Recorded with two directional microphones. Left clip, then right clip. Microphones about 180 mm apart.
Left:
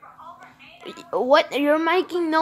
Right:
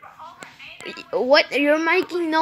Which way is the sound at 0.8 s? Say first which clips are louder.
Right 1 dB; centre (ahead or behind).